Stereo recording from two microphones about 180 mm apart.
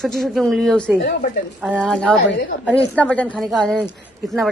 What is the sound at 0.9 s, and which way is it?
Speech, 65° left (ahead or behind).